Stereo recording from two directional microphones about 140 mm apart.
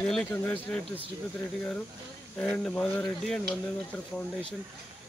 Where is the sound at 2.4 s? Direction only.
5° left (ahead or behind).